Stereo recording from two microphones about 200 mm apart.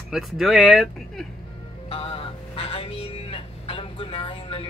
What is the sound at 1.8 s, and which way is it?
Telephone, 30° left (ahead or behind).